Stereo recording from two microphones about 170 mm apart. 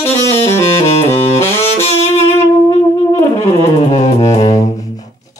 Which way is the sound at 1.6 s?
35° left (ahead or behind).